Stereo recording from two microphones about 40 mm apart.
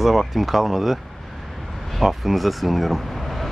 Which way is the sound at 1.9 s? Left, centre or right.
Centre.